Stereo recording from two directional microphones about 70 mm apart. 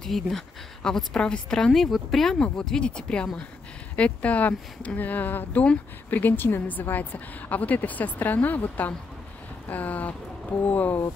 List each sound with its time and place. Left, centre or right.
0.0 s speech: centre; by 11.1 s left